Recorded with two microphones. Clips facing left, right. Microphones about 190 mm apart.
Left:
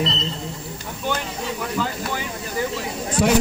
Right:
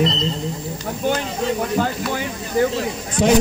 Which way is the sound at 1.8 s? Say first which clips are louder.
Right 2 dB; 50° right (ahead or behind).